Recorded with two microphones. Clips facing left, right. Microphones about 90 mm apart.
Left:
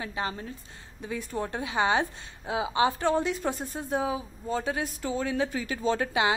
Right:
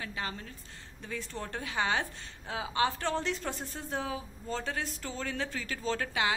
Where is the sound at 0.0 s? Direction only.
20° left (ahead or behind).